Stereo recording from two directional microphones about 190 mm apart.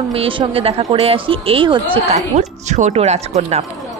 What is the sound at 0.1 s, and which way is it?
Speech, 30° right (ahead or behind).